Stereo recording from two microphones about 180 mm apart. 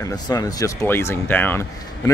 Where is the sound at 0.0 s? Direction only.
20° left (ahead or behind).